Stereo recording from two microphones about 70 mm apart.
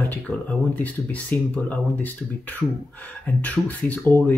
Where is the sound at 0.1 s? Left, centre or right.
Left.